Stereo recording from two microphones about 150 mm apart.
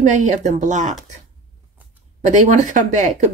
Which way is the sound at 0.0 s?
55° right (ahead or behind).